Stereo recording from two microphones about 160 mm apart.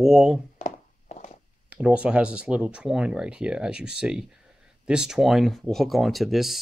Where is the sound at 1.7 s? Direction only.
5° right (ahead or behind).